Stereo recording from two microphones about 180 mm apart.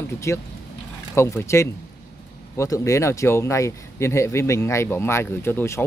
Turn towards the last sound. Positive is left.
turn(degrees=15)  # may be behind; listen again after turning